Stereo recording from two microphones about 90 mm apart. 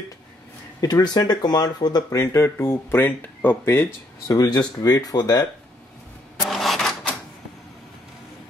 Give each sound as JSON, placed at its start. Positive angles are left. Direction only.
{"t": 0.7, "sound": "speech", "side_deg": 50}
{"t": 2.1, "sound": "speech", "side_deg": 30}
{"t": 4.3, "sound": "speech", "side_deg": 45}
{"t": 6.4, "sound": "printer", "side_deg": 0}